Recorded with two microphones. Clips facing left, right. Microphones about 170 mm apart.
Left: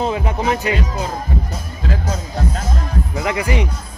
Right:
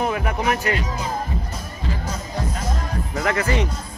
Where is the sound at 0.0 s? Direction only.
25° left (ahead or behind).